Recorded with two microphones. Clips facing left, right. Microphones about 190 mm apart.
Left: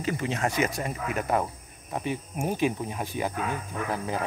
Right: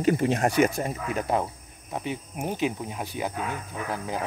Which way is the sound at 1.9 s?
15° right (ahead or behind).